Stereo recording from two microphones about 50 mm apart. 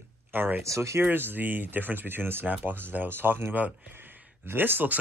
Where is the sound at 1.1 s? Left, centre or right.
Right.